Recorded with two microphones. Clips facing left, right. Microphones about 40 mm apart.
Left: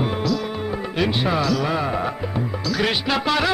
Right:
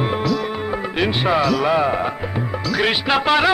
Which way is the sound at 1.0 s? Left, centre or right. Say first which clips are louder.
Right 3 dB; right.